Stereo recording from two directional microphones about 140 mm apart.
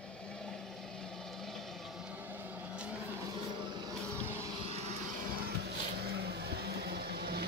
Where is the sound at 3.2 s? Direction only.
30° right (ahead or behind).